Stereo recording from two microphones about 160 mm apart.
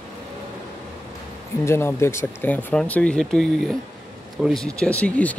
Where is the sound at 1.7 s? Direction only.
15° left (ahead or behind).